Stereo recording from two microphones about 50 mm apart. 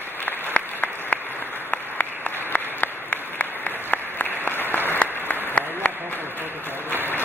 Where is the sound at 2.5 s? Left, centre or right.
Left.